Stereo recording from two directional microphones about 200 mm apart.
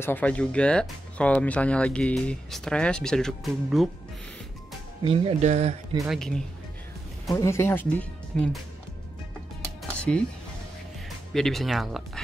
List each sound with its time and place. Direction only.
0.0 s speech: 10° left (ahead or behind)
5.0 s speech: 30° right (ahead or behind)
5.9 s speech: centre (ahead or behind)
7.3 s speech: 15° left (ahead or behind)
9.9 s music: 5° left (ahead or behind)
11.3 s speech: centre (ahead or behind)